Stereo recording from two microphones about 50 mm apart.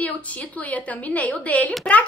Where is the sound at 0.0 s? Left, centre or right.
Left.